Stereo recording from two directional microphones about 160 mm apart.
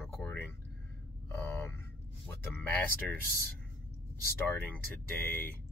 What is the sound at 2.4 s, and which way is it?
Speech, 10° left (ahead or behind).